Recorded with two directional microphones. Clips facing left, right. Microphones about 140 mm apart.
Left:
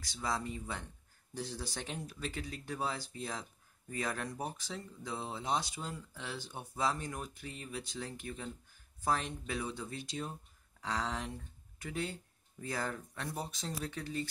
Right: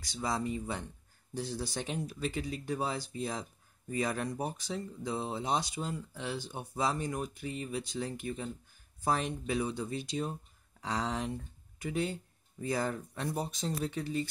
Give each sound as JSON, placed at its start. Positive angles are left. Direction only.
{"t": 0.0, "sound": "speech", "side_deg": -15}